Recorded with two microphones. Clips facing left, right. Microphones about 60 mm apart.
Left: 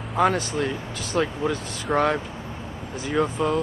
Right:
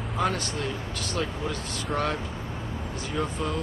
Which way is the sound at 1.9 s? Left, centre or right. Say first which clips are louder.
Left 7 dB; left.